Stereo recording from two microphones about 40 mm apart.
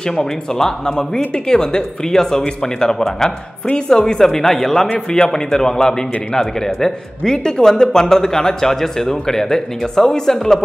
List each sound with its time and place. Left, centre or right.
0.2 s a man's voice: centre